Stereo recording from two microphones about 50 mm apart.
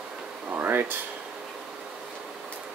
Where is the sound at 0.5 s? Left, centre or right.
Right.